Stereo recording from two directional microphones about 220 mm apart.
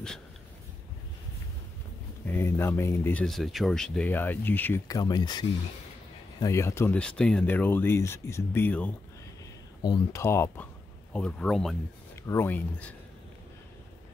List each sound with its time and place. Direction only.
2.2 s speech: 10° left (ahead or behind)